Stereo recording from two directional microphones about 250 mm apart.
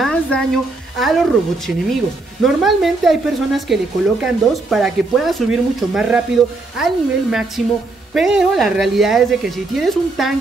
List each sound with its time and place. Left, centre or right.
0.0 s a sound: centre
0.9 s speech: centre
2.4 s speech: centre